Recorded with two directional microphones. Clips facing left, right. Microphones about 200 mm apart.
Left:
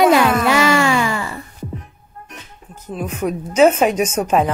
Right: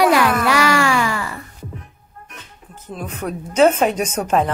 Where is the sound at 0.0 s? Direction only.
20° left (ahead or behind).